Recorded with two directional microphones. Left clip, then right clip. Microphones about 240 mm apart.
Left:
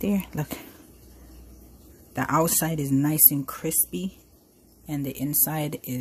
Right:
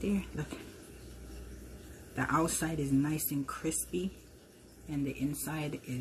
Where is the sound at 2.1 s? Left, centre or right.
Left.